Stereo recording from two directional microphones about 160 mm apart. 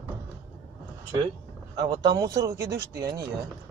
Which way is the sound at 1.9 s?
25° right (ahead or behind).